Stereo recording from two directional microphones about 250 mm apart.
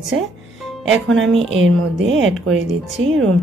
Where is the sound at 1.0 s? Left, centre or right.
Right.